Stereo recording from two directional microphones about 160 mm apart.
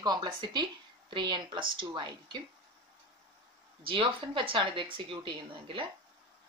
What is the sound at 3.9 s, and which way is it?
Speech, 30° right (ahead or behind).